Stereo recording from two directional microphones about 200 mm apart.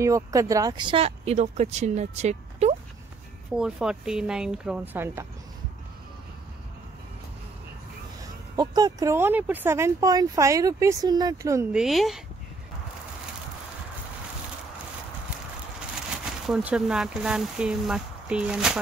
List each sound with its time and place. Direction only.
0.0 s speech: 15° right (ahead or behind); by 2.7 s 35° right (ahead or behind)
3.5 s speech: 5° right (ahead or behind)
8.2 s speech: 20° right (ahead or behind)
11.7 s speech: centre (ahead or behind)
16.4 s speech: 5° right (ahead or behind)